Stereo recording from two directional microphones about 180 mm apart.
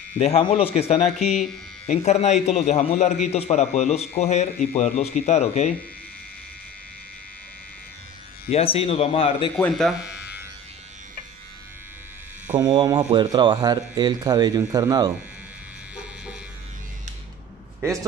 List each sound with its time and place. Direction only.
0.2 s a man's voice: 35° left (ahead or behind)
1.2 s speech: centre (ahead or behind)
1.9 s a man's voice: 40° left (ahead or behind)
8.5 s a man's voice: 35° left (ahead or behind)
9.6 s speech: centre (ahead or behind)
12.5 s speech: 20° right (ahead or behind)